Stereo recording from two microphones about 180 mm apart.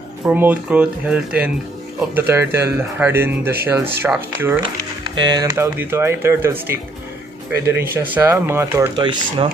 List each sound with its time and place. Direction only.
0.2 s speech: 10° right (ahead or behind)
5.0 s speech: 25° right (ahead or behind)
8.9 s speech: 25° right (ahead or behind)